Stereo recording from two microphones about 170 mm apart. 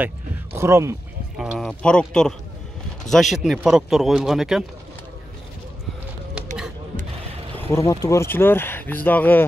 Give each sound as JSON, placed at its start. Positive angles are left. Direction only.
{"t": 0.6, "sound": "speech", "side_deg": -15}
{"t": 1.4, "sound": "speech", "side_deg": 0}
{"t": 6.3, "sound": "a sound", "side_deg": -5}
{"t": 7.5, "sound": "speech", "side_deg": 15}